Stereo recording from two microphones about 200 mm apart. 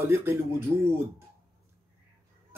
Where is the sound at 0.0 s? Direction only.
10° right (ahead or behind).